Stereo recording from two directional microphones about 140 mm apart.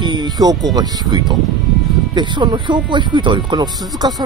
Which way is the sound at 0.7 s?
30° right (ahead or behind).